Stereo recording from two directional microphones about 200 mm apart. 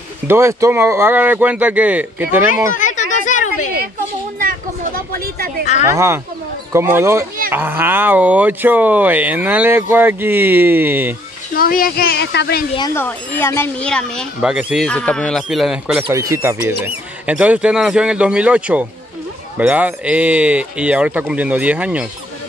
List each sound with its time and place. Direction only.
0.3 s speech: 15° right (ahead or behind)
2.7 s a sound: 40° left (ahead or behind)
4.4 s a sound: 45° right (ahead or behind)
5.9 s speech: 15° right (ahead or behind)
11.5 s speech: 45° left (ahead or behind)
12.7 s speech: 20° left (ahead or behind); by 16.0 s centre (ahead or behind)
16.1 s speech: 15° right (ahead or behind)